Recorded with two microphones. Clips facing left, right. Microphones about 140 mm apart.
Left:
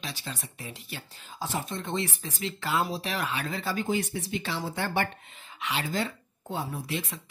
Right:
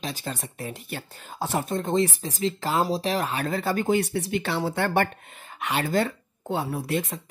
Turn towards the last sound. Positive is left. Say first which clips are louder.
# right 7 dB
turn(degrees=-50)  # may be behind; listen again after turning